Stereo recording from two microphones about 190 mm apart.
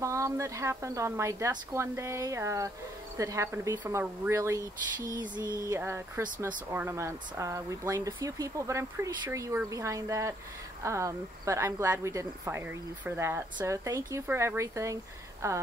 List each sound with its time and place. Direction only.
0.0 s speech: 15° right (ahead or behind)